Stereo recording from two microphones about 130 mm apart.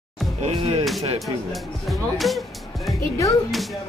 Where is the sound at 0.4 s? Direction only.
50° right (ahead or behind).